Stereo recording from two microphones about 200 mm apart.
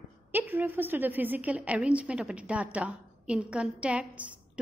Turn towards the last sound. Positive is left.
turn(degrees=-5)  # may be behind; listen again after turning